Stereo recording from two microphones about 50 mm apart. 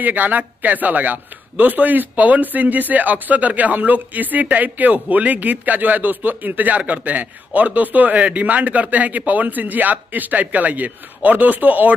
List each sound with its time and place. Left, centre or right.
0.0 s a man's voice: right